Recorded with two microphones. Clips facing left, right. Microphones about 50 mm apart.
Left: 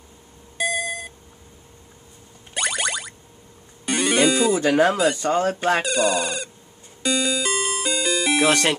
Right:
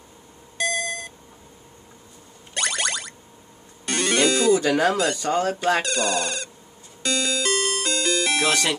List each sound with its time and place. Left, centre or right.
0.6 s beep: centre
2.5 s a sound: centre
3.8 s music: centre
4.6 s speech: left
5.8 s speech: centre
7.0 s music: centre
8.5 s speech: left